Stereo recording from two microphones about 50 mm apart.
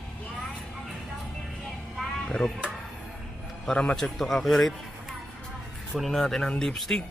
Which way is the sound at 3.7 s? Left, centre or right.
Centre.